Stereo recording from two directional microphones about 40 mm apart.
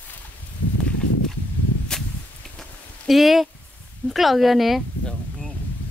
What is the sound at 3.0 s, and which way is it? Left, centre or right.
Speech, centre.